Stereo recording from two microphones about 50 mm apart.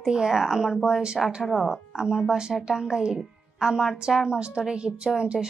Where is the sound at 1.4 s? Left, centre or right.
Centre.